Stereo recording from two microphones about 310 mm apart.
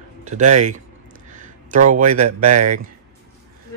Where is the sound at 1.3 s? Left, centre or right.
Right.